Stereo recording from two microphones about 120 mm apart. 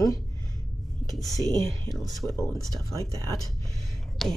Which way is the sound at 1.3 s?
30° right (ahead or behind).